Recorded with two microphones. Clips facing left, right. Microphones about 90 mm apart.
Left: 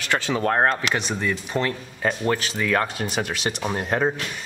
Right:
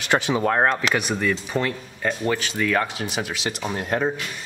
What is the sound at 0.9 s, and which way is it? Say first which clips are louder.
Speech: right 2 dB; 25° left (ahead or behind).